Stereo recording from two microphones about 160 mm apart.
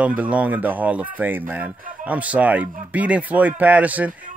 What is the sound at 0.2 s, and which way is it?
Speech, 10° right (ahead or behind).